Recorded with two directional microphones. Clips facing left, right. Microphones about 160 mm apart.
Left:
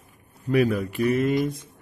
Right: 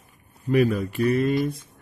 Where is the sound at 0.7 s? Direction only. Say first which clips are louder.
Even; 15° left (ahead or behind).